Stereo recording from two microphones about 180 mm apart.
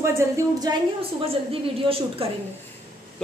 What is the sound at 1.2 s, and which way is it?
A woman's voice, 30° right (ahead or behind).